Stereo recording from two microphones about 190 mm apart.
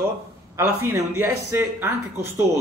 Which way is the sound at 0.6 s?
15° right (ahead or behind).